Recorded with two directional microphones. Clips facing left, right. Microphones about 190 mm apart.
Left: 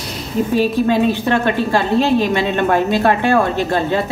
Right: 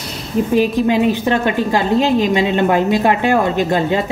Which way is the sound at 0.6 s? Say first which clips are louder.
Even; 15° right (ahead or behind).